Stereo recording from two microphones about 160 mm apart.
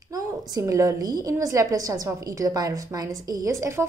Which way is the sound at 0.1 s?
20° right (ahead or behind).